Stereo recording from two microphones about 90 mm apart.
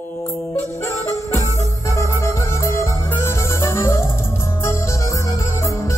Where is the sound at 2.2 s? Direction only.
30° left (ahead or behind).